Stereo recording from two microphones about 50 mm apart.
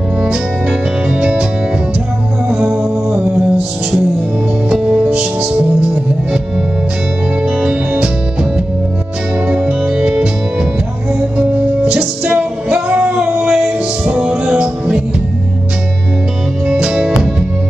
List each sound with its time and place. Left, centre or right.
0.2 s music: centre
2.5 s music: right
5.0 s music: right
7.4 s music: right
9.5 s music: right
16.6 s music: centre